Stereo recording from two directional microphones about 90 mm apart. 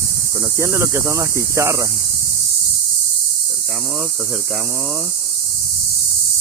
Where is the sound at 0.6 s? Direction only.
30° right (ahead or behind).